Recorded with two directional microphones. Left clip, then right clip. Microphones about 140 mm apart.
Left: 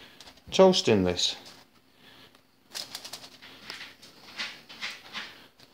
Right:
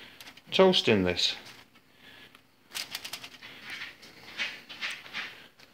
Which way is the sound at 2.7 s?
15° left (ahead or behind).